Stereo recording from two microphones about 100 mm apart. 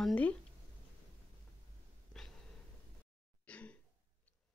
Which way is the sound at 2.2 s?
5° left (ahead or behind).